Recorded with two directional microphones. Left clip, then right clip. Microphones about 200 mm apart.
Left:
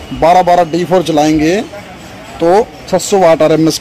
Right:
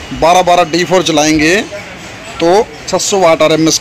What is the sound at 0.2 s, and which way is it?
Speech, 10° right (ahead or behind).